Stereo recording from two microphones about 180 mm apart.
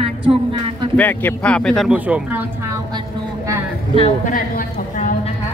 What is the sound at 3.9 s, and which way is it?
Speech, 35° left (ahead or behind).